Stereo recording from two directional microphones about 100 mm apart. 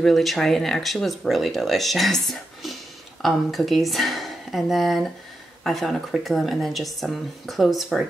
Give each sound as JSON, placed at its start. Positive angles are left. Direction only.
{"t": 0.0, "sound": "speech", "side_deg": 0}